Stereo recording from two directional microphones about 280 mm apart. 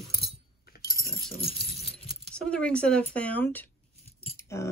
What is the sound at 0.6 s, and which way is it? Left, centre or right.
Coin, left.